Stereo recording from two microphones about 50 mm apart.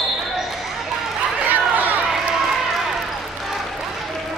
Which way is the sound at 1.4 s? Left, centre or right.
Right.